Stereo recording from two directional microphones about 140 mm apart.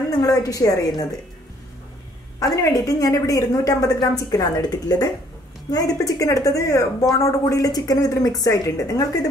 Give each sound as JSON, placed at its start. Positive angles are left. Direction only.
{"t": 0.1, "sound": "speech", "side_deg": 25}
{"t": 2.4, "sound": "speech", "side_deg": 25}